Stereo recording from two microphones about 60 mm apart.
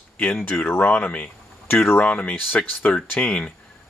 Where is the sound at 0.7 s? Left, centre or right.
Left.